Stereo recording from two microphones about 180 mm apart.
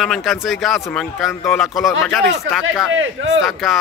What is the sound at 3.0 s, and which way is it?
Speech, 90° right.